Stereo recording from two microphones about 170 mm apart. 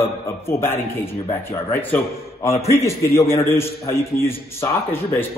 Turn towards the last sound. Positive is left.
turn(degrees=15)  # may be behind; listen again after turning